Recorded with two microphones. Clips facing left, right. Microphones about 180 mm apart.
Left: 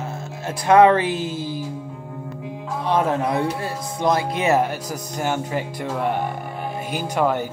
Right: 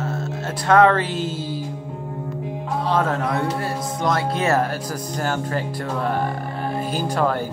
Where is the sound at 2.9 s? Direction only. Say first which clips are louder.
Left 3 dB; 20° left (ahead or behind).